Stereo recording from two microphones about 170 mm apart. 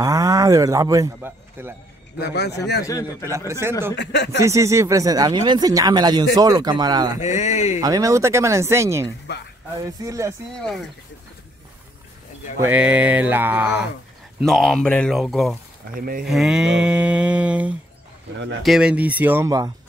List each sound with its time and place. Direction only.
0.0 s a man's voice: 20° right (ahead or behind)
2.1 s a man's voice: 80° left
2.9 s a man's voice: 20° left (ahead or behind)
3.3 s speech: 15° right (ahead or behind)
3.9 s speech: 90° left
4.4 s speech: 15° right (ahead or behind)
7.2 s speech: 45° left (ahead or behind)
7.8 s speech: 20° right (ahead or behind)
12.5 s speech: 10° right (ahead or behind)
14.4 s speech: 5° left (ahead or behind); by 19.7 s 20° right (ahead or behind)